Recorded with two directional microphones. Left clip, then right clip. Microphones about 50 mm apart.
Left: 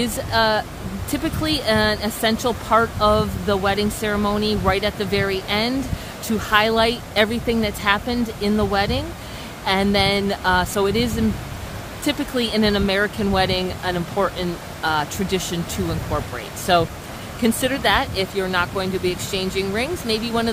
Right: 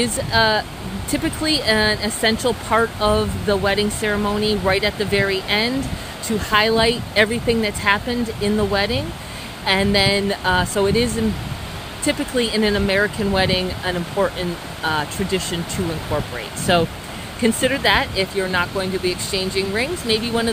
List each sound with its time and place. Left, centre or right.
0.0 s speech: left
6.2 s speech: left
15.2 s speech: left
16.7 s speech: left
17.4 s speech: left